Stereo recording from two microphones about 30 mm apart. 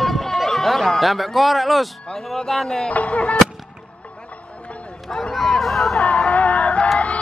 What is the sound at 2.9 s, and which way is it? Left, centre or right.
Speech, left.